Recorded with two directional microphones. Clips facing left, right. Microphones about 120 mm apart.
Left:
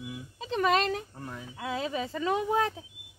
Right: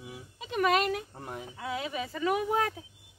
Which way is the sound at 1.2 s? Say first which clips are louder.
Right 1 dB; 20° right (ahead or behind).